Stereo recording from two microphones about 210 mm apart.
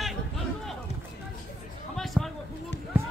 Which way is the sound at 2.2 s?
Centre (ahead or behind).